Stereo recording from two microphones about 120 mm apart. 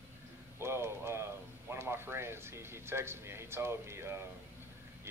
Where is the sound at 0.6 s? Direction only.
20° right (ahead or behind).